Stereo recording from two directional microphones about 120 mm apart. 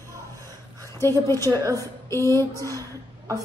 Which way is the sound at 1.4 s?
30° right (ahead or behind).